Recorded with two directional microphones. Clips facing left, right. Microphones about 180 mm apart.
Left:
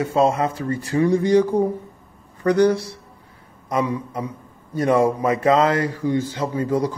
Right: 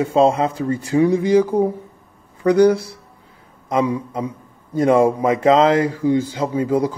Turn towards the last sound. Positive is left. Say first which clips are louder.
# right 3 dB
turn(degrees=-10)  # may be behind; listen again after turning